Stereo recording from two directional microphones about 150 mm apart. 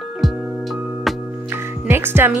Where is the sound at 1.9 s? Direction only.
15° right (ahead or behind).